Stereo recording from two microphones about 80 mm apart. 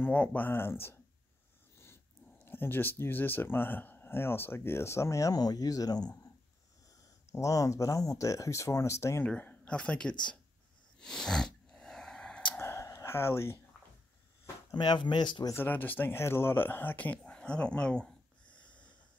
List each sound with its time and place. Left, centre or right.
0.0 s speech: left
2.3 s speech: left
7.2 s speech: left
9.4 s speech: centre
11.0 s a sound: centre
12.5 s a sound: left
14.7 s speech: left
15.5 s speech: left
18.6 s wheeze: centre